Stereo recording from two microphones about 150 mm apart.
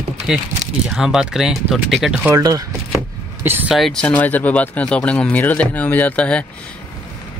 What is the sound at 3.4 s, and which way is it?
Speech, 15° right (ahead or behind).